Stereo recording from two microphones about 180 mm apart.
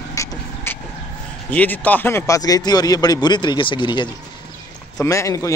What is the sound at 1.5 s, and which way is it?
Speech, 10° left (ahead or behind).